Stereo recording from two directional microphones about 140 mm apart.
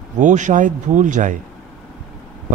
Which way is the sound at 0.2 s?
60° right (ahead or behind).